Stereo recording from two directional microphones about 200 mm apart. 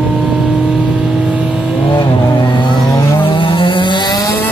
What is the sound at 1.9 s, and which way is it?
Vehicle, 25° left (ahead or behind).